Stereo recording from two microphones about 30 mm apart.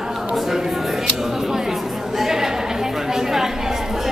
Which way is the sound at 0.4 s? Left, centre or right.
Centre.